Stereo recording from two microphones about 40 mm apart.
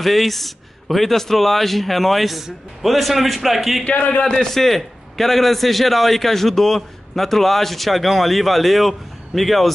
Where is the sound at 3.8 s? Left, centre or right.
Left.